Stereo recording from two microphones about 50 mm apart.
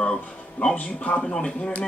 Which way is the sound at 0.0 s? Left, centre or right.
Centre.